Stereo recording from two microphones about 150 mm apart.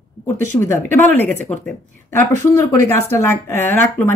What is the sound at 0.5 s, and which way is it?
A woman's voice, 15° left (ahead or behind).